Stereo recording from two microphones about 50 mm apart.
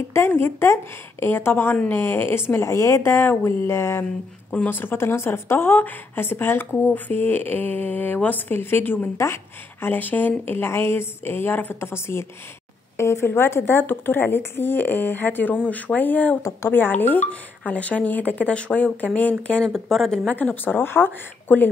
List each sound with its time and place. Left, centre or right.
0.4 s a woman's voice: left
2.6 s speech: left
4.6 s a woman's voice: left
9.1 s speech: left
9.9 s a woman's voice: left
11.8 s a woman's voice: left
15.5 s speech: left
19.7 s speech: centre
20.1 s speech: left
20.8 s a woman's voice: left